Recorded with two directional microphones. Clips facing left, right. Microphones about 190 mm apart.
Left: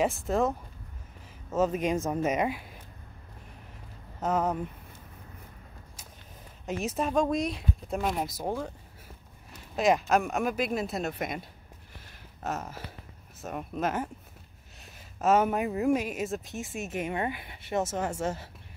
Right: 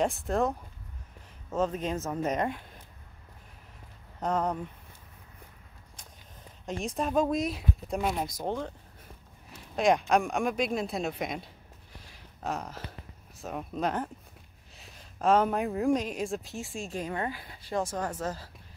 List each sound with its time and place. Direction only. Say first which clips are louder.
0.0 s speech: left 1 dB; centre (ahead or behind)
4.2 s speech: left 1 dB; 5° left (ahead or behind)
6.6 s speech: left 2 dB; 5° left (ahead or behind)
11.9 s a sound: right 1 dB; centre (ahead or behind)
13.4 s speech: even; centre (ahead or behind)
16.7 s speech: left 2 dB; 20° left (ahead or behind)